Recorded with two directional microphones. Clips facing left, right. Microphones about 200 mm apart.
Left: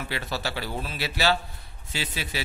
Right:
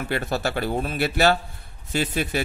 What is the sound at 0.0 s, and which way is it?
Speech, 50° right (ahead or behind).